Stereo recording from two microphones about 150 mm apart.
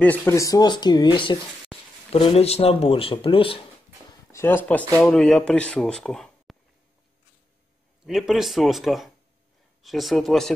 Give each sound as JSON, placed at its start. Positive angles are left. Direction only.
{"t": 0.0, "sound": "speech", "side_deg": 10}
{"t": 1.7, "sound": "a sound", "side_deg": 0}
{"t": 2.1, "sound": "speech", "side_deg": 45}
{"t": 4.3, "sound": "speech", "side_deg": 15}
{"t": 8.0, "sound": "speech", "side_deg": 0}